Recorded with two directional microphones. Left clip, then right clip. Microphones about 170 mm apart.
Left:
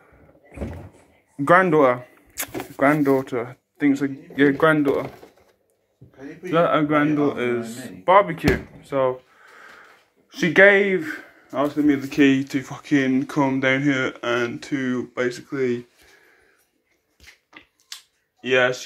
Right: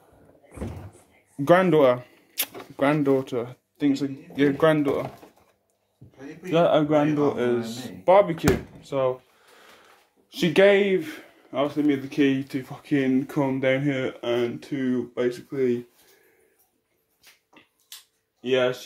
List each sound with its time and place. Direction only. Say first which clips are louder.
1.4 s speech: left 2 dB; 40° right (ahead or behind); by 5.0 s 10° right (ahead or behind)
6.5 s speech: left 1 dB; 10° right (ahead or behind)
7.3 s speech: even; 20° right (ahead or behind)
7.6 s speech: even; 15° left (ahead or behind)
8.0 s speech: left 2 dB; 20° right (ahead or behind)
10.3 s speech: left 4 dB; 15° right (ahead or behind)
12.1 s speech: left 5 dB; 5° right (ahead or behind); by 15.8 s 20° right (ahead or behind)
18.4 s speech: left 4 dB; 10° right (ahead or behind)